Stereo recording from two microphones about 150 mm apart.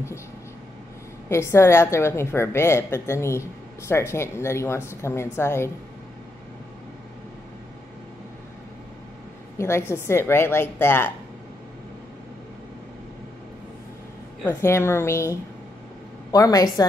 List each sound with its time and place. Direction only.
1.3 s a woman's voice: 20° left (ahead or behind)
9.6 s a woman's voice: 15° left (ahead or behind)
14.4 s a woman's voice: 15° left (ahead or behind)